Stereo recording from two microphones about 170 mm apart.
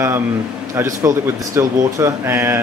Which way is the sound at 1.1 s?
50° right (ahead or behind).